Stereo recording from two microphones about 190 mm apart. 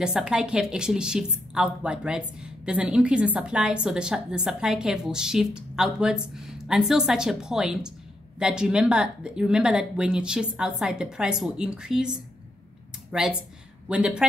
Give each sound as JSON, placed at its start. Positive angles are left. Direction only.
{"t": 0.0, "sound": "a woman's voice", "side_deg": -5}